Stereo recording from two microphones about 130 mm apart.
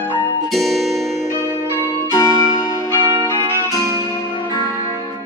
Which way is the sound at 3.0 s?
35° right (ahead or behind).